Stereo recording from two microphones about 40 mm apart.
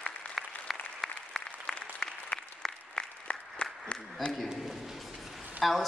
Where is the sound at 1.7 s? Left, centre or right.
Left.